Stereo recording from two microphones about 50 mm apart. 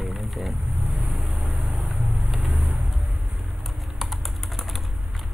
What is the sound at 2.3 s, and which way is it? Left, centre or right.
Vehicle, centre.